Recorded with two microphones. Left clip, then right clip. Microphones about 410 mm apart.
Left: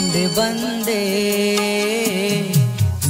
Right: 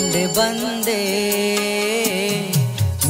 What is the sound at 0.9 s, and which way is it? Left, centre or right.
Music, centre.